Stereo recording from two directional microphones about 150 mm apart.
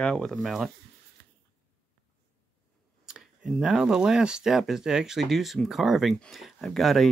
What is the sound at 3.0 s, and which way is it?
Speech, 5° right (ahead or behind).